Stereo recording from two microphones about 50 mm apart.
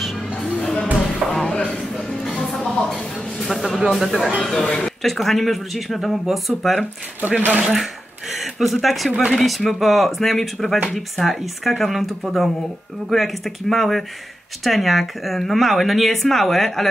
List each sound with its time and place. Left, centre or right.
1.3 s music: centre
2.3 s a sound: centre
3.9 s speech: centre
7.2 s speech: right
7.6 s speech: centre